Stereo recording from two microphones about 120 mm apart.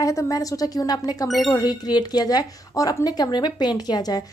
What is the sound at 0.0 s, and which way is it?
Speech, 25° left (ahead or behind).